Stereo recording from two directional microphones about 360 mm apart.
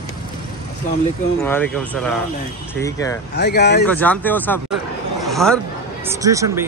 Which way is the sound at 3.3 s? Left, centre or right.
Left.